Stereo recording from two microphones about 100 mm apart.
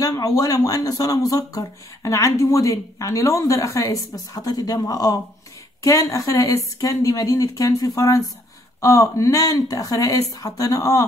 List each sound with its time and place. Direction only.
0.0 s speech: 35° left (ahead or behind)